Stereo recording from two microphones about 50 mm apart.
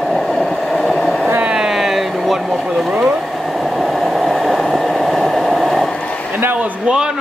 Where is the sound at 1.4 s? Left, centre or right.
Centre.